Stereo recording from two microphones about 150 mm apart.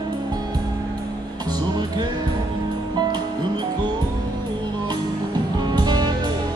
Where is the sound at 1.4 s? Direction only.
30° right (ahead or behind).